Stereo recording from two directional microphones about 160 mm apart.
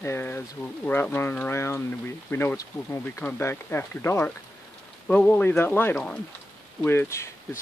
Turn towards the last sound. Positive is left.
turn(degrees=15)  # may be behind; listen again after turning